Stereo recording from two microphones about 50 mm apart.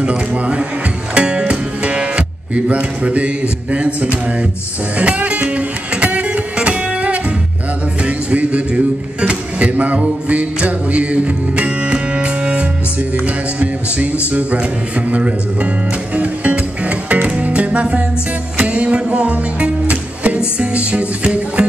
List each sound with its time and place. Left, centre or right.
0.3 s speech: right
1.1 s music: centre
8.0 s speech: right
9.9 s music: right
14.3 s speech: right
16.2 s music: right